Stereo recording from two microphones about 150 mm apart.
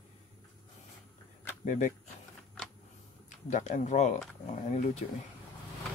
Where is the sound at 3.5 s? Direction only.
55° left (ahead or behind).